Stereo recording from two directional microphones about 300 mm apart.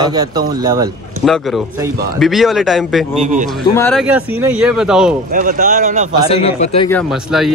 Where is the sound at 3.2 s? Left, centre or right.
Right.